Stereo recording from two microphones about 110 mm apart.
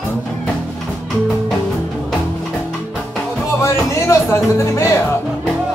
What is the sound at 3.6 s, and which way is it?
Speech, 25° left (ahead or behind).